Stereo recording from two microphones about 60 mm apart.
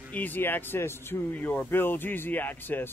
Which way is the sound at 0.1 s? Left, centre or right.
Left.